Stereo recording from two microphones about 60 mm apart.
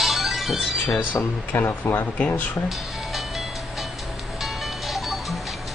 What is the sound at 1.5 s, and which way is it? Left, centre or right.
Speech, left.